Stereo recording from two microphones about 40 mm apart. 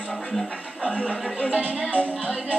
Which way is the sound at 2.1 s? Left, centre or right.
Right.